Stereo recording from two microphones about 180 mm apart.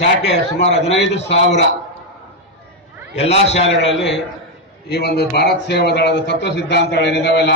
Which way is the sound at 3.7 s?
85° left.